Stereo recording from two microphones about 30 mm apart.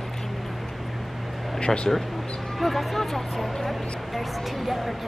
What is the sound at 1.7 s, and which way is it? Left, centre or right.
Speech, centre.